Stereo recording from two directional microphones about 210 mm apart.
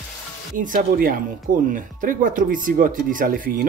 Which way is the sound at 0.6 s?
40° right (ahead or behind).